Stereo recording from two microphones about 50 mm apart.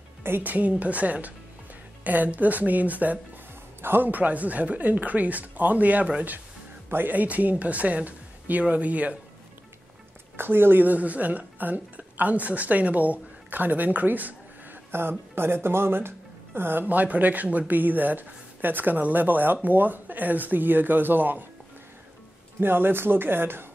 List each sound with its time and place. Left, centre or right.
0.2 s speech: right
3.8 s speech: right
4.1 s speech: right
10.3 s speech: right
14.9 s speech: right
16.8 s speech: right
22.6 s speech: right